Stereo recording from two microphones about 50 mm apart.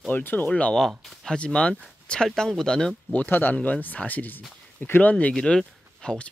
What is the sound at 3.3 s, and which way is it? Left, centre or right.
Speech, left.